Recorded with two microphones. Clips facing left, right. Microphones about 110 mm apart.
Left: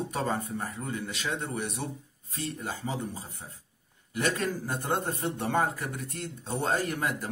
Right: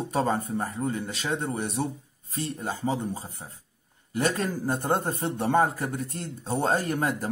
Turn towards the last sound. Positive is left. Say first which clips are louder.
# right 3 dB
turn(degrees=-35)  # may be behind; listen again after turning